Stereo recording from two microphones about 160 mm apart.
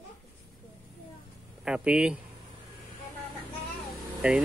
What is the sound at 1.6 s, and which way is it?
Speech, 5° right (ahead or behind).